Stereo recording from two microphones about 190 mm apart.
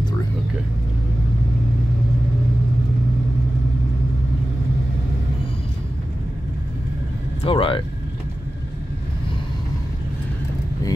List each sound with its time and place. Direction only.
7.4 s speech: 25° left (ahead or behind)